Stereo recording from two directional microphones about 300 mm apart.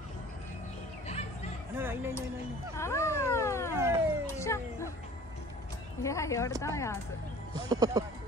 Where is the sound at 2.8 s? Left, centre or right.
Centre.